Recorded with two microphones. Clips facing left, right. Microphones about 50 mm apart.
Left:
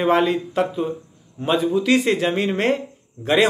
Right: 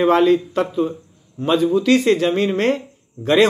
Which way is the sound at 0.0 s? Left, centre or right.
Centre.